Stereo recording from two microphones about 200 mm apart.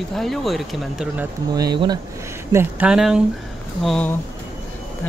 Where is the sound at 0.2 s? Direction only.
Centre (ahead or behind).